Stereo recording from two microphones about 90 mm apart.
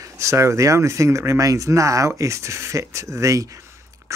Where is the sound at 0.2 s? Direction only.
35° right (ahead or behind).